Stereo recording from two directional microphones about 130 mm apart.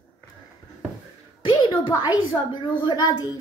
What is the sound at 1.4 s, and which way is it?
A woman's voice, 35° left (ahead or behind).